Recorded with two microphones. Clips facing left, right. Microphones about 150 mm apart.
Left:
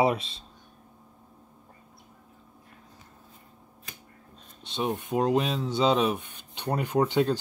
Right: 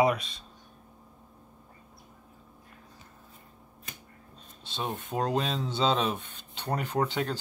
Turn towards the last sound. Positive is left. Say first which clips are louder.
# left 6 dB
turn(degrees=15)  # may be behind; listen again after turning